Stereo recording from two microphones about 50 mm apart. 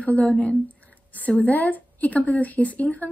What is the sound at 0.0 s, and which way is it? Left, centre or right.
A woman's voice, left.